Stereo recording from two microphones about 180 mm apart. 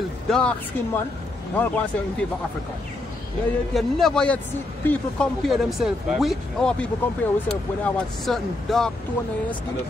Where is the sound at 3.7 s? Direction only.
Centre (ahead or behind).